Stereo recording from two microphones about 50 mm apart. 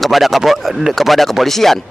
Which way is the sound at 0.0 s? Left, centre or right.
Centre.